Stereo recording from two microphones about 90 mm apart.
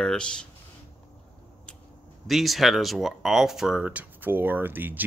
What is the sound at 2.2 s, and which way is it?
Speech, centre (ahead or behind).